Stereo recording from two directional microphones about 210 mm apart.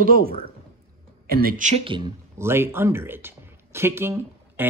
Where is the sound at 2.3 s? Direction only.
10° right (ahead or behind).